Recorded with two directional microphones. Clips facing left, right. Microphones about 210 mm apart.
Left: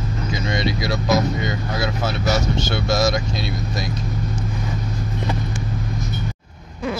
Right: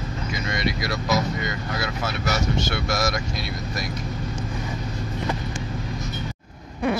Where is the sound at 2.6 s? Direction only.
25° left (ahead or behind).